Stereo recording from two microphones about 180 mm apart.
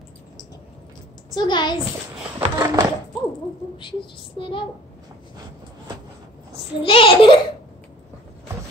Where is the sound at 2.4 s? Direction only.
20° right (ahead or behind).